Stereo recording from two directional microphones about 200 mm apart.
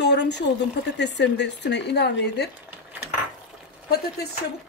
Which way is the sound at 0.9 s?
60° left (ahead or behind).